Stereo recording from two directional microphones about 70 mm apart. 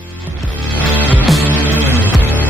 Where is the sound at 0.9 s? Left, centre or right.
Right.